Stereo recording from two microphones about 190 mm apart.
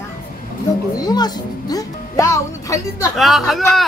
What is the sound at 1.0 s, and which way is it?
Speech, 20° left (ahead or behind).